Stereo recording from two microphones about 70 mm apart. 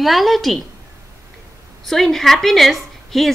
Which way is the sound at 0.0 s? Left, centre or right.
Centre.